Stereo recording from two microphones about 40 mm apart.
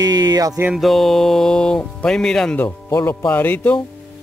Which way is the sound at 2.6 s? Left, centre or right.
Left.